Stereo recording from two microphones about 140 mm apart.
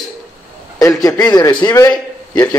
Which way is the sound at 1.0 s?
25° left (ahead or behind).